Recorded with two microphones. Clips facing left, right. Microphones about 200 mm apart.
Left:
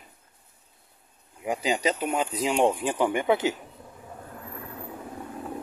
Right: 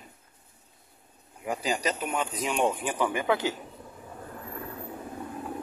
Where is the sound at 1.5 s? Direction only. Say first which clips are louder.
Left 3 dB; 25° left (ahead or behind).